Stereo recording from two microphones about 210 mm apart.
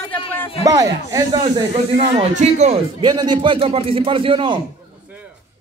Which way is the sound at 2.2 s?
30° right (ahead or behind).